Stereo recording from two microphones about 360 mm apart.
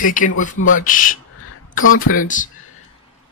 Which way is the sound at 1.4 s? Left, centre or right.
Left.